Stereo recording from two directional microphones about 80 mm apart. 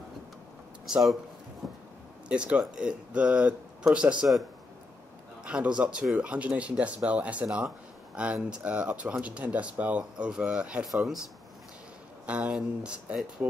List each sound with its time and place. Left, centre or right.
0.8 s speech: centre
1.6 s a sound: centre
2.2 s speech: centre
5.4 s speech: centre
10.9 s speech: centre
12.3 s speech: centre